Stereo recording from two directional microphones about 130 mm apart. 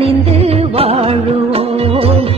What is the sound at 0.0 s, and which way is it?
Music, 50° right (ahead or behind).